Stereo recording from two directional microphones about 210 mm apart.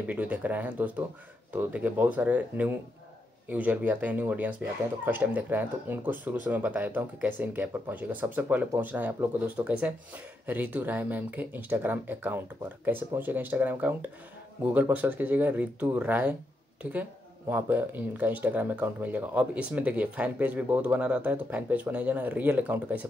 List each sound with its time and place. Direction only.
0.0 s speech: 5° right (ahead or behind)
17.5 s speech: 10° right (ahead or behind)